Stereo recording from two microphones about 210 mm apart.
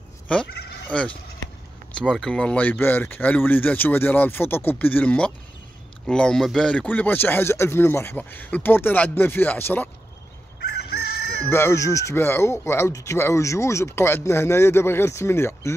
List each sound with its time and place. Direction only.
0.3 s goat: 5° left (ahead or behind)
1.9 s speech: centre (ahead or behind)
10.9 s chicken: 50° left (ahead or behind)
11.4 s speech: 10° left (ahead or behind)